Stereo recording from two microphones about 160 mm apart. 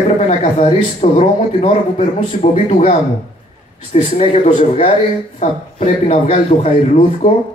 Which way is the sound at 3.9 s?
40° left (ahead or behind).